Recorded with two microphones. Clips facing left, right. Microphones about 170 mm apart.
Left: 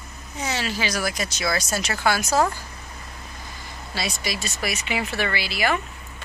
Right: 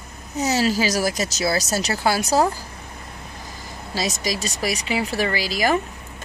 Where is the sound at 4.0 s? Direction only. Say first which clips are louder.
Right 4 dB; 40° right (ahead or behind).